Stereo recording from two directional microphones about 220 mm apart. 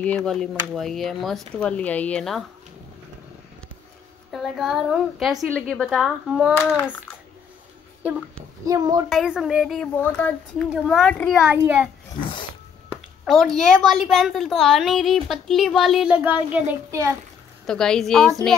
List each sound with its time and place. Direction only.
0.0 s a woman's voice: 5° left (ahead or behind)
4.3 s a woman's voice: centre (ahead or behind)
8.6 s a woman's voice: 15° right (ahead or behind)
9.1 s a woman's voice: centre (ahead or behind)
9.9 s a woman's voice: 10° left (ahead or behind); by 11.9 s 10° right (ahead or behind)
13.2 s a woman's voice: centre (ahead or behind)
17.6 s a woman's voice: 5° left (ahead or behind)